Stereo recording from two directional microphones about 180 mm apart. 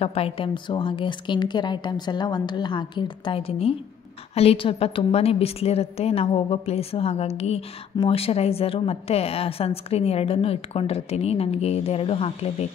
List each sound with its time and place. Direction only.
0.0 s a woman's voice: 35° left (ahead or behind)